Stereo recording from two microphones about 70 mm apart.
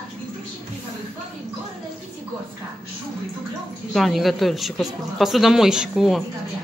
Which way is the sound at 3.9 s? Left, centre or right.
Centre.